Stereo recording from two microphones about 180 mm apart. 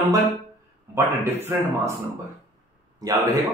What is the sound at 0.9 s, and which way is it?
A man's voice, 15° right (ahead or behind).